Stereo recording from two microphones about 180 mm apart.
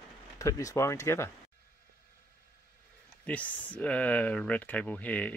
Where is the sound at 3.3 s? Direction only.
10° left (ahead or behind).